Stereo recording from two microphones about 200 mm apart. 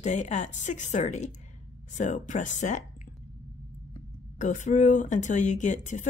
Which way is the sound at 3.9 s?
35° left (ahead or behind).